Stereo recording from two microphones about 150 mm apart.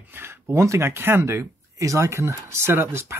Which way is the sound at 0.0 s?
15° right (ahead or behind).